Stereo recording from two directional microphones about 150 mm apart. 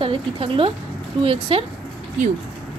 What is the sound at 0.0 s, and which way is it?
A woman's voice, 35° right (ahead or behind).